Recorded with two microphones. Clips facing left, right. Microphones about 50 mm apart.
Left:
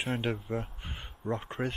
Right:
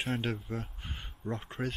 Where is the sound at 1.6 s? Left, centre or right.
Centre.